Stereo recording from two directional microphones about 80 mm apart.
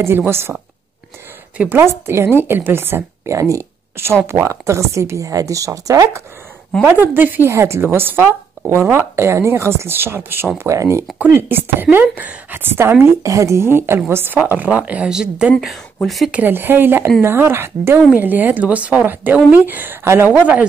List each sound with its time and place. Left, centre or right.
0.0 s a woman's voice: right
1.6 s speech: right
3.3 s a woman's voice: right
6.8 s speech: right
7.5 s a woman's voice: right
11.3 s speech: right; by 15.5 s centre
16.3 s a woman's voice: right
20.3 s speech: centre